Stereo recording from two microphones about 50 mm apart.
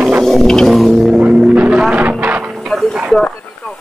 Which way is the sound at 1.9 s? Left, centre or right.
Right.